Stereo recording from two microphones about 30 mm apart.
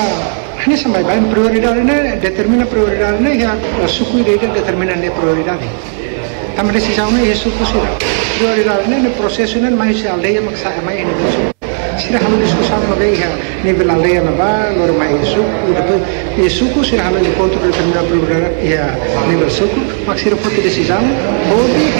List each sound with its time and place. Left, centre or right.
0.7 s a man's voice: left
6.6 s a man's voice: left
12.1 s a man's voice: left